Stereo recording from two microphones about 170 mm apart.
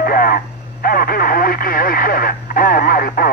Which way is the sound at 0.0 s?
60° left (ahead or behind).